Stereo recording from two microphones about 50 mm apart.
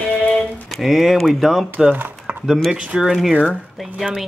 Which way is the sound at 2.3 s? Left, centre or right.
Right.